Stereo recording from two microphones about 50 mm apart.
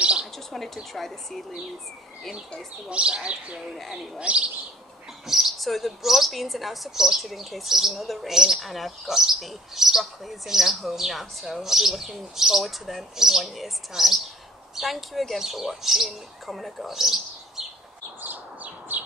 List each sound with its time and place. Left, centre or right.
0.0 s bird: centre
0.9 s speech: centre
2.9 s speech: right
3.7 s speech: centre
4.2 s speech: right
5.2 s speech: centre
18.2 s bird: right